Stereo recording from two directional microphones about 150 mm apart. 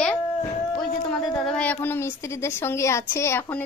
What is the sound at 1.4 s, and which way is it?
A woman's voice, 5° left (ahead or behind).